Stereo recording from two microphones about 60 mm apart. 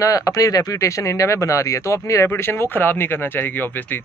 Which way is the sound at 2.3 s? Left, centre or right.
Left.